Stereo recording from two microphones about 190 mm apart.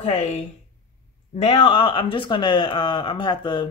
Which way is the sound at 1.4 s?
30° left (ahead or behind).